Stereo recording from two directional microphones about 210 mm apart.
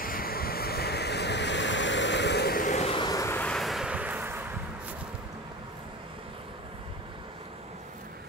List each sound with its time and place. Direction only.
0.0 s waves: 45° left (ahead or behind); by 4.4 s 10° right (ahead or behind)